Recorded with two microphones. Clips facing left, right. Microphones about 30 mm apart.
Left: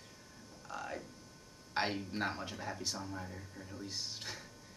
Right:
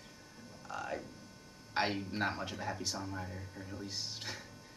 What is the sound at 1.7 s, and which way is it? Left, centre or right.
Speech, centre.